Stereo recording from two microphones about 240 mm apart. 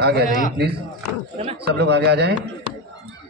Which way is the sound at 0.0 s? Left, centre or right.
Right.